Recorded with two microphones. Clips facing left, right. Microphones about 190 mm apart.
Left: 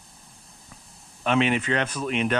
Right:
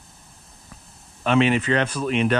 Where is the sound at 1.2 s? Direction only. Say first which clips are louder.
Right 3 dB; centre (ahead or behind).